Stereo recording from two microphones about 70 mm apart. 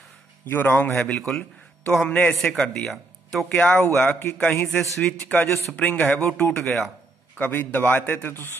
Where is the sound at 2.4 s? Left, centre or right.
Centre.